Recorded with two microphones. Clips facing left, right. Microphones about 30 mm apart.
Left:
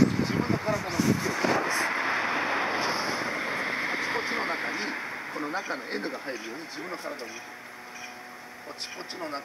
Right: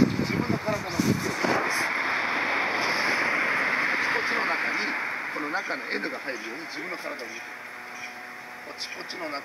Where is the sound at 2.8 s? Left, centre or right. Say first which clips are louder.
Right 4 dB; right.